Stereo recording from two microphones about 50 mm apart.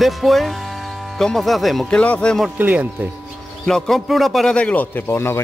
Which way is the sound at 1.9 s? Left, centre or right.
Left.